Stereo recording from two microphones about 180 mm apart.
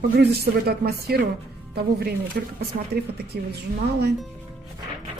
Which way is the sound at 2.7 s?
55° right (ahead or behind).